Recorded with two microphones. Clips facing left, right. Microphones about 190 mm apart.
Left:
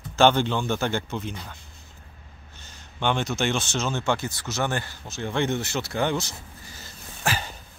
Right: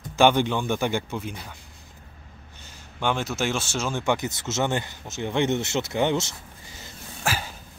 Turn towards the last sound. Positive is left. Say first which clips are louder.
# even
turn(degrees=-5)  # may be behind; listen again after turning